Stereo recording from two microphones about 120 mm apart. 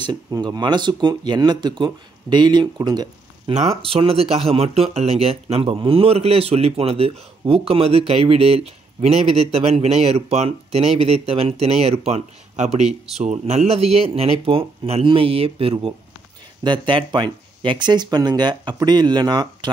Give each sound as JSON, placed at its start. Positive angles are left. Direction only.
{"t": 0.0, "sound": "speech", "side_deg": -35}
{"t": 3.5, "sound": "speech", "side_deg": -55}